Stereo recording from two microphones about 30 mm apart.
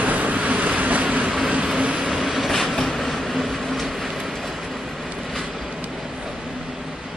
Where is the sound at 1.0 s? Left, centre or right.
Right.